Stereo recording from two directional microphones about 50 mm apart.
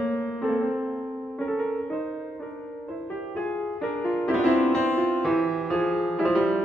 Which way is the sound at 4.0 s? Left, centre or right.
Centre.